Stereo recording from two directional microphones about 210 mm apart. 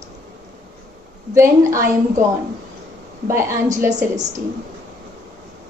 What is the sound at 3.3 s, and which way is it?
Speech, 10° right (ahead or behind).